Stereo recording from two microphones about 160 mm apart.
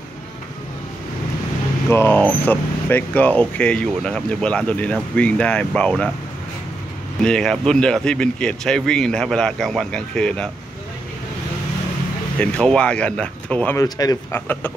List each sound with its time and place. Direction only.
1.9 s speech: 15° left (ahead or behind)
7.2 s speech: 5° left (ahead or behind)
12.4 s speech: 5° left (ahead or behind)
13.7 s speech: 25° left (ahead or behind)